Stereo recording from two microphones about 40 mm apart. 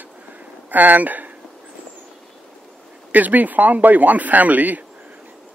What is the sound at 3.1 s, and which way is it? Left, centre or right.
A man's voice, right.